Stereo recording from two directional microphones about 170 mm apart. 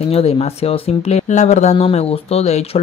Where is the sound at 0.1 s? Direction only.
35° left (ahead or behind).